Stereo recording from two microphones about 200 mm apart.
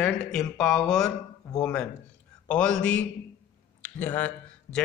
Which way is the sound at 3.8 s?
10° left (ahead or behind).